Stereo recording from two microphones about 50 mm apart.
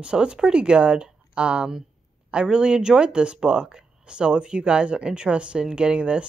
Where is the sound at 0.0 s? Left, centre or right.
Centre.